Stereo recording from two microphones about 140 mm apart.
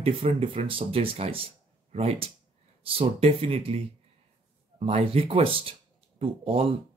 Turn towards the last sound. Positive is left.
turn(degrees=-45)  # may be behind; listen again after turning